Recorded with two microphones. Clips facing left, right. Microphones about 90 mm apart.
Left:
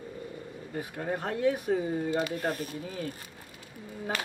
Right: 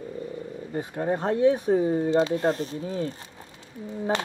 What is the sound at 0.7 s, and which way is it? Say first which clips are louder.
Speech: right 6 dB; 25° right (ahead or behind).